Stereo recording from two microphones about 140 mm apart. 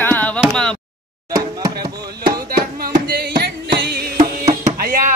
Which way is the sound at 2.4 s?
90° right.